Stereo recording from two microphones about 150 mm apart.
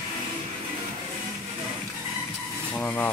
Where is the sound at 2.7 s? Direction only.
10° left (ahead or behind).